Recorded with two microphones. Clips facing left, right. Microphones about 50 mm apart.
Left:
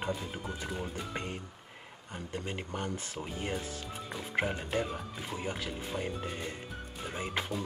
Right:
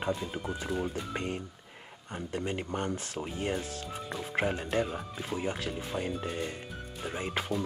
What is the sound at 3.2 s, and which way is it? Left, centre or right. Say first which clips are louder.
Speech: right 3 dB; centre.